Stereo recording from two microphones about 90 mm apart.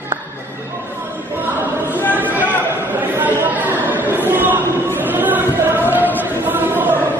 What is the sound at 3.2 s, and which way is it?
Chatter, 20° right (ahead or behind).